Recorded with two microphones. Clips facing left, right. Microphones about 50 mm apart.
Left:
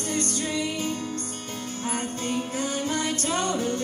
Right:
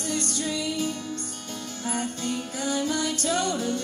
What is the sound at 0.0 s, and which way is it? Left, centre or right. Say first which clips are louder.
Music: left 1 dB; left.